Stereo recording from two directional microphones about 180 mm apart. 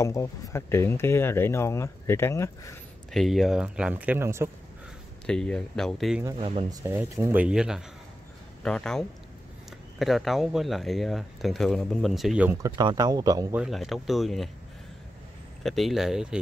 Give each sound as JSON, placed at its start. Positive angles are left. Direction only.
{"t": 0.0, "sound": "speech", "side_deg": 15}
{"t": 3.1, "sound": "speech", "side_deg": 0}
{"t": 5.2, "sound": "speech", "side_deg": 5}
{"t": 6.2, "sound": "speech", "side_deg": -25}
{"t": 6.8, "sound": "speech", "side_deg": -15}
{"t": 12.6, "sound": "speech", "side_deg": -20}
{"t": 13.6, "sound": "speech", "side_deg": 0}
{"t": 15.6, "sound": "speech", "side_deg": 0}